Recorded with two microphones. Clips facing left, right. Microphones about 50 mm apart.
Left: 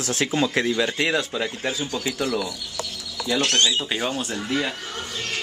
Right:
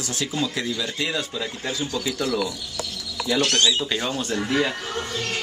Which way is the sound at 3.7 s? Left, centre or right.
Centre.